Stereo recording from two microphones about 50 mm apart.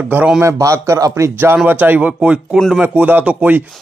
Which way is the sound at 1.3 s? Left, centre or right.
Right.